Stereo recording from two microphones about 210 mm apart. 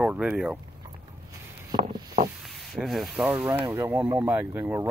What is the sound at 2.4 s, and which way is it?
Sanding, centre (ahead or behind).